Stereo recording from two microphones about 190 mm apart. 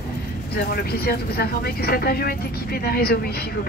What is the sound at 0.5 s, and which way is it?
Speech, 55° left (ahead or behind).